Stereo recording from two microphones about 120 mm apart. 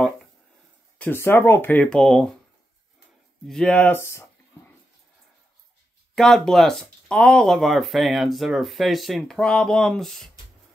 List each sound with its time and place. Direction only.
0.9 s speech: 15° left (ahead or behind)
3.4 s speech: 5° left (ahead or behind)
4.0 s a sound: 25° left (ahead or behind)
6.1 s speech: 5° left (ahead or behind)